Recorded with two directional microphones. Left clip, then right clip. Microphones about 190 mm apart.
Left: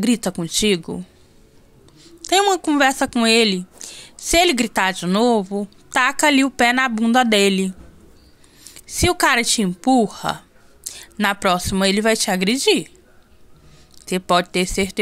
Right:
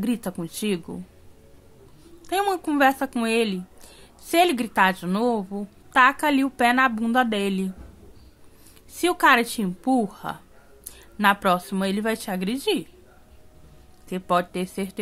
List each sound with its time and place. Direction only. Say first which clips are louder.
0.0 s a woman's voice: left 7 dB; 25° left (ahead or behind)
2.2 s a woman's voice: left 7 dB; 25° left (ahead or behind)
8.7 s a woman's voice: left 5 dB; 25° left (ahead or behind)
14.0 s a woman's voice: left 5 dB; 30° left (ahead or behind)